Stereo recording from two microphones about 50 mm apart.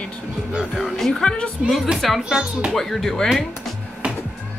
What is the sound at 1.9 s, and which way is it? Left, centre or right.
Speech, centre.